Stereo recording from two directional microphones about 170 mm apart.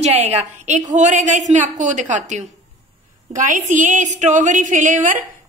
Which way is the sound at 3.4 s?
50° right (ahead or behind).